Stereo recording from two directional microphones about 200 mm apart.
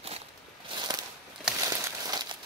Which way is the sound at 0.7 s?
20° right (ahead or behind).